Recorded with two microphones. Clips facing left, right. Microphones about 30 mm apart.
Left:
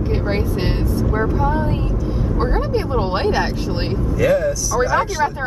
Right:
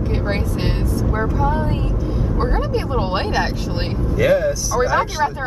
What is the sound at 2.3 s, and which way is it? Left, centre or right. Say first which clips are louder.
Speech: left 2 dB; centre.